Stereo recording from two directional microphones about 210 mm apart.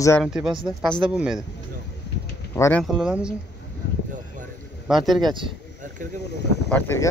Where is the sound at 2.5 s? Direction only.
15° left (ahead or behind).